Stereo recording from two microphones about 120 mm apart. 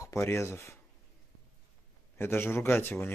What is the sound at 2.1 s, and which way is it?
Speech, 20° left (ahead or behind).